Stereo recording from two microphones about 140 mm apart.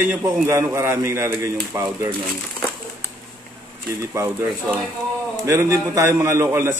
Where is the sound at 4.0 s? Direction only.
20° right (ahead or behind).